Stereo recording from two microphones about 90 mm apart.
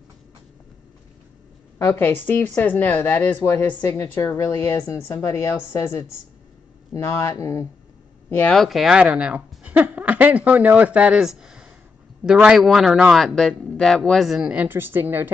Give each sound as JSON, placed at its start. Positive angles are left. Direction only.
{"t": 1.8, "sound": "speech", "side_deg": 30}
{"t": 3.8, "sound": "speech", "side_deg": 35}
{"t": 8.5, "sound": "speech", "side_deg": 0}
{"t": 9.0, "sound": "speech", "side_deg": -15}
{"t": 13.1, "sound": "speech", "side_deg": 5}
{"t": 14.5, "sound": "speech", "side_deg": -20}